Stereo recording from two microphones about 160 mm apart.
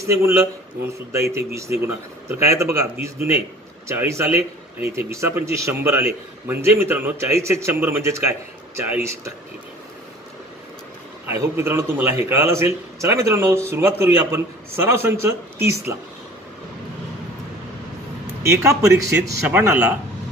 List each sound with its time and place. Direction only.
0.0 s a man's voice: 15° right (ahead or behind)
11.2 s a man's voice: 15° right (ahead or behind)
18.2 s a man's voice: 15° right (ahead or behind)